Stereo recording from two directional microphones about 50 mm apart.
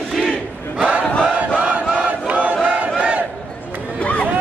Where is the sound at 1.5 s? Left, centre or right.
Right.